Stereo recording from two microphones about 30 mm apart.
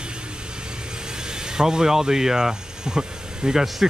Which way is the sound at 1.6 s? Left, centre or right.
Right.